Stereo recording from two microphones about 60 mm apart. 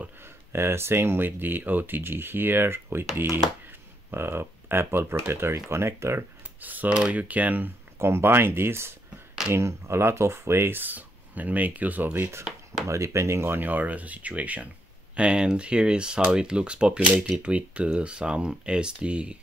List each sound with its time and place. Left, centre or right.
0.2 s speech: right
4.1 s speech: right
6.6 s speech: right
8.0 s speech: right
12.8 s speech: right; by 19.3 s centre